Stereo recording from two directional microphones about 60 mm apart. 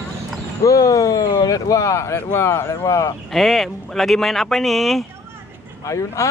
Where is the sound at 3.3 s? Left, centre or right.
Centre.